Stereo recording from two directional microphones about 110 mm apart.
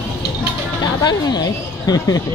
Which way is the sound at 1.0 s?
40° left (ahead or behind).